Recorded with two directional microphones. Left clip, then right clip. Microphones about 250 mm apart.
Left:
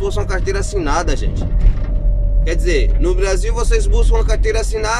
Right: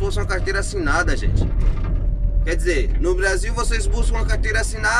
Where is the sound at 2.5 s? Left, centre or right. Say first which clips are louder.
Left 3 dB; centre.